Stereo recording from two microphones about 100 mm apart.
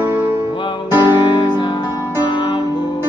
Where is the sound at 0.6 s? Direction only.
50° left (ahead or behind).